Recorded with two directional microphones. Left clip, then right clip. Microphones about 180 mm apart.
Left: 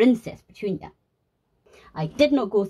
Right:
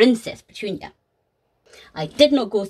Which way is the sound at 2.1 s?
10° right (ahead or behind).